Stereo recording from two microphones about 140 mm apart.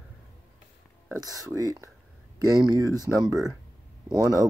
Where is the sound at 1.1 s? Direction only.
25° right (ahead or behind).